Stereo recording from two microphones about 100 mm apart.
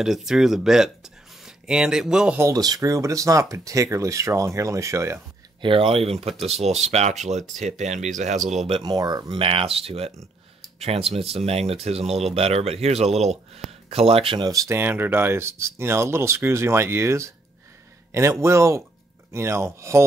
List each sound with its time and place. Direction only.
0.0 s speech: 5° right (ahead or behind)
2.3 s speech: 35° right (ahead or behind)
5.6 s speech: 60° right (ahead or behind)
6.4 s speech: 90° right
8.5 s speech: 60° right (ahead or behind)
8.8 s speech: 40° right (ahead or behind)
9.4 s speech: 65° right (ahead or behind)
14.4 s speech: 35° right (ahead or behind)
14.8 s speech: 20° right (ahead or behind)
18.4 s speech: 30° right (ahead or behind)